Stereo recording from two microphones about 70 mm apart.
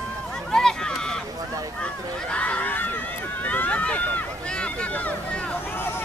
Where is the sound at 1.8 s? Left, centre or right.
Centre.